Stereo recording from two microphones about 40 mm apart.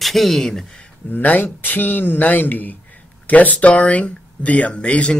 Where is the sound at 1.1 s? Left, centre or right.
Left.